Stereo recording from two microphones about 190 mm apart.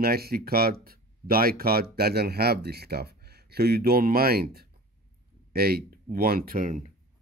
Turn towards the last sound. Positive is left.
turn(degrees=-45)  # may be behind; listen again after turning